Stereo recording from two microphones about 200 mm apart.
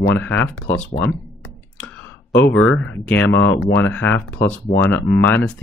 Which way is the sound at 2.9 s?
10° left (ahead or behind).